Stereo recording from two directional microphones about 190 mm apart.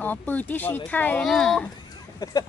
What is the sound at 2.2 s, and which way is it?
Speech, 20° left (ahead or behind).